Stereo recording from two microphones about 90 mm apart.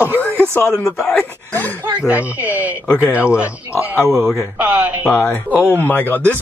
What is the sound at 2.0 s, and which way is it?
Speech, 15° right (ahead or behind).